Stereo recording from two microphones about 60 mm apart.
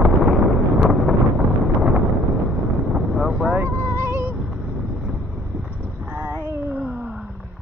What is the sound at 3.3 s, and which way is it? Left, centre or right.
Vehicle, right.